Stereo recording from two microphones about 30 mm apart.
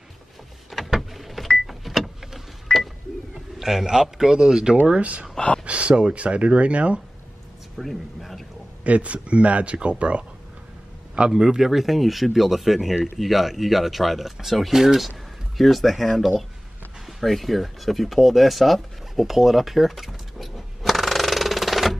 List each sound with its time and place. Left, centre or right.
0.8 s power windows: centre
3.5 s speech: centre
5.4 s a sound: left
5.7 s speech: right
7.7 s speech: centre
8.8 s speech: right
11.3 s speech: centre
17.0 s a sound: centre